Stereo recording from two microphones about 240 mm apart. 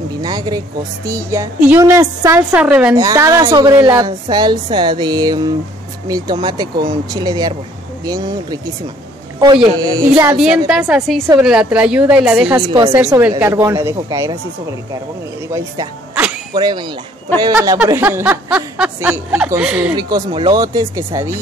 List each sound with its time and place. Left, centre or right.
0.1 s a woman's voice: centre
9.8 s a woman's voice: centre
12.6 s a woman's voice: centre
15.5 s a woman's voice: centre
20.0 s a woman's voice: centre